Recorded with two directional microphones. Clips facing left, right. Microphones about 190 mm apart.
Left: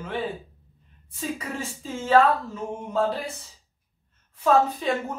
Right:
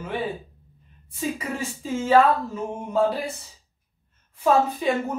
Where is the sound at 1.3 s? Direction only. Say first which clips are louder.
Right 3 dB; 15° right (ahead or behind).